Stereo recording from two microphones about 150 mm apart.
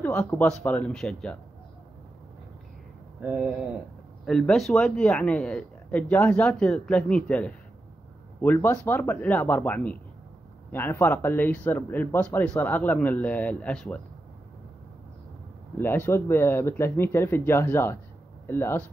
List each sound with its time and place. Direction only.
0.0 s speech: 10° left (ahead or behind)
3.2 s speech: 10° right (ahead or behind)
4.3 s speech: 5° left (ahead or behind)
8.5 s speech: 15° left (ahead or behind)
15.8 s speech: 15° left (ahead or behind)